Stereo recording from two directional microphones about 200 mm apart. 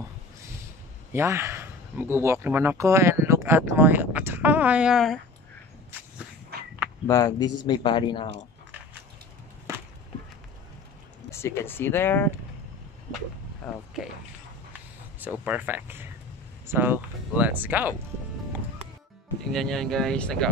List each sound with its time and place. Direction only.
1.1 s speech: 15° right (ahead or behind)
7.1 s speech: 20° left (ahead or behind)
11.2 s speech: 15° left (ahead or behind)
13.6 s speech: 5° left (ahead or behind)
14.7 s a sound: 10° right (ahead or behind)
15.4 s speech: 10° right (ahead or behind)
19.4 s speech: centre (ahead or behind)